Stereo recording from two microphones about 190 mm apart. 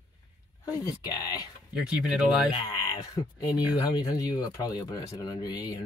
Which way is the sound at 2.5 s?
20° left (ahead or behind).